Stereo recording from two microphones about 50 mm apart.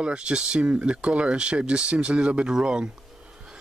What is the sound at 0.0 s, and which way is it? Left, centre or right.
Speech, centre.